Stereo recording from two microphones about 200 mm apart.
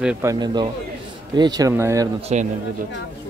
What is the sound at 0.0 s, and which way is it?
Speech, 10° right (ahead or behind).